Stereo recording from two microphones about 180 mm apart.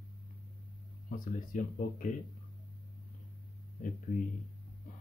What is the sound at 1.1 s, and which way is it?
Speech, 45° left (ahead or behind).